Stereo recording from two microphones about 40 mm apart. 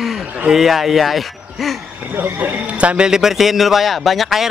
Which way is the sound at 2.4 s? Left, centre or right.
Right.